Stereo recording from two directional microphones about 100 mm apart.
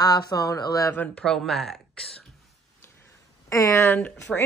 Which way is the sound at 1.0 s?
15° left (ahead or behind).